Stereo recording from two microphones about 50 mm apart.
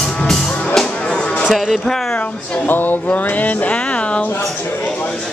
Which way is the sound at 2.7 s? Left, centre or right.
Left.